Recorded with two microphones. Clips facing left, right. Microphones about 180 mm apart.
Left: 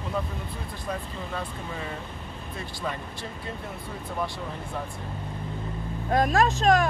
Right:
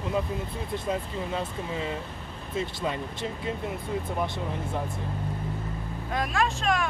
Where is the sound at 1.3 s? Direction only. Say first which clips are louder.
Right 2 dB; 20° right (ahead or behind).